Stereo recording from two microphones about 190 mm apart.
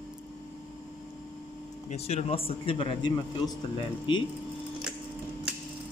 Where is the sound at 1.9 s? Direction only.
35° left (ahead or behind).